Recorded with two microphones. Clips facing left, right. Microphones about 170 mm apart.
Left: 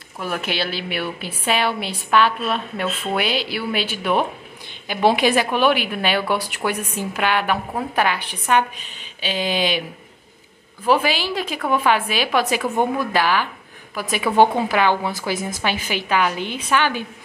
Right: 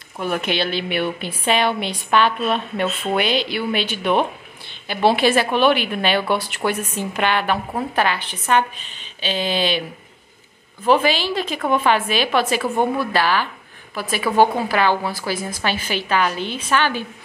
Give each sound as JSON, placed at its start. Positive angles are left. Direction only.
{"t": 0.2, "sound": "a woman's voice", "side_deg": 5}